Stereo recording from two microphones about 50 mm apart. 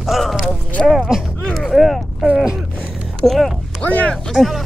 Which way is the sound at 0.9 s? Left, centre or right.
Centre.